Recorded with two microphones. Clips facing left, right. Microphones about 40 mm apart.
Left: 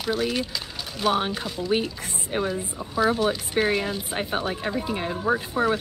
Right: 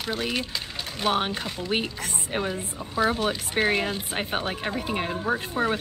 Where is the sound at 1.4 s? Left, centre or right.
Right.